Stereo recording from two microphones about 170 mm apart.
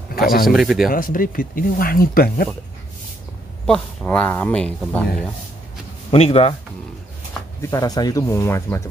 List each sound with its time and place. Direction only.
0.1 s a sound: 60° left (ahead or behind)
0.5 s speech: centre (ahead or behind)
0.8 s speech: 55° left (ahead or behind)
3.6 s speech: 5° left (ahead or behind)
6.1 s speech: 35° left (ahead or behind)
7.6 s speech: 20° left (ahead or behind)